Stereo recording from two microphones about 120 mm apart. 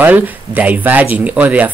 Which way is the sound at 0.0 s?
15° right (ahead or behind).